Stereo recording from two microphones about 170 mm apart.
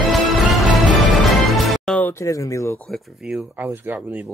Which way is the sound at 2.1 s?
20° left (ahead or behind).